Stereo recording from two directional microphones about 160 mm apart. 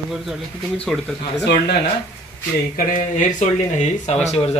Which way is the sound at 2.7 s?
55° left (ahead or behind).